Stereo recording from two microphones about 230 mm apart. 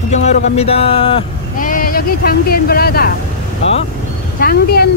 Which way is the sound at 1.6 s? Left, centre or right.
Left.